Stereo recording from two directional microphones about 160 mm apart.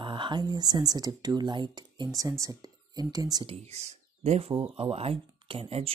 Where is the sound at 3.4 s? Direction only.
40° right (ahead or behind).